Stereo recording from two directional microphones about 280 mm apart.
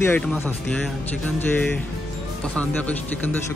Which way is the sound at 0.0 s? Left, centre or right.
Centre.